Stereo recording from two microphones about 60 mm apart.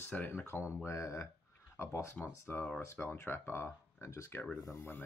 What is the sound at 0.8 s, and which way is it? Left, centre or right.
Speech, left.